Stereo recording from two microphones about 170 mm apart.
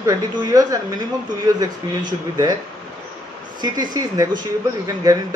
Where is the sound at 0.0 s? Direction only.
20° right (ahead or behind).